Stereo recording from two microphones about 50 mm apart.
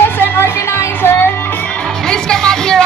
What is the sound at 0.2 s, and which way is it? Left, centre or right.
Music, left.